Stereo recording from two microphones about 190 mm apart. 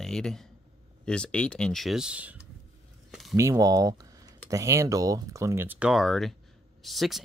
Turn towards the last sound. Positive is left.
turn(degrees=0)  # may be behind; listen again after turning